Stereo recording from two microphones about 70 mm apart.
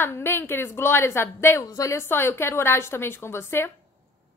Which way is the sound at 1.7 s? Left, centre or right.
Left.